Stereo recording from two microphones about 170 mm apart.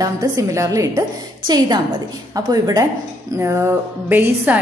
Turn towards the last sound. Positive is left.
turn(degrees=-15)  # may be behind; listen again after turning